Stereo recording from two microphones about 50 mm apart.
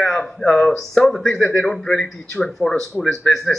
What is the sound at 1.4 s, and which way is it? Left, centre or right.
Speech, centre.